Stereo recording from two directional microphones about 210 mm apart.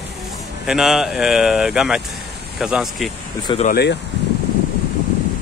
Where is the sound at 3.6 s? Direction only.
50° left (ahead or behind).